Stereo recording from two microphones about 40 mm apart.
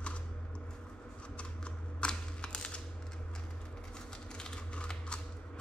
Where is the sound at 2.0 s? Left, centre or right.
Left.